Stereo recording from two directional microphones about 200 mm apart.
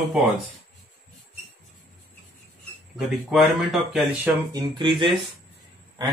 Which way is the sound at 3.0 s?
Centre (ahead or behind).